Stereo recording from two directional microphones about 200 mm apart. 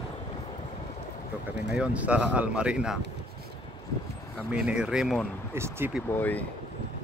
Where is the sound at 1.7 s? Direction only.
5° right (ahead or behind).